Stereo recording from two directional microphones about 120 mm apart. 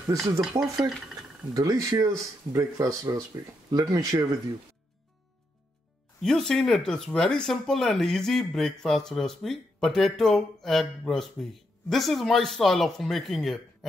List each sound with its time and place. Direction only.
0.4 s speech: 5° right (ahead or behind)
1.5 s speech: 30° right (ahead or behind)
6.2 s speech: 5° left (ahead or behind)